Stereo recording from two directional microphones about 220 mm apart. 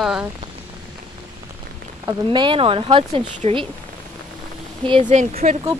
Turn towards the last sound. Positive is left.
turn(degrees=-30)  # may be behind; listen again after turning